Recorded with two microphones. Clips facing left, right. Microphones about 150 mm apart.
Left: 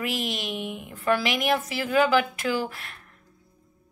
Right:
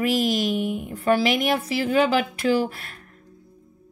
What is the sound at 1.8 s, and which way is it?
Speech, 35° right (ahead or behind).